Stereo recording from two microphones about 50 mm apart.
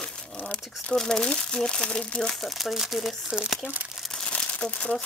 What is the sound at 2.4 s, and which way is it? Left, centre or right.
Speech, centre.